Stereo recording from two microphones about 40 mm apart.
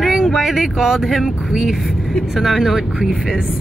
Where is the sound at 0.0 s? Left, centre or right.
Centre.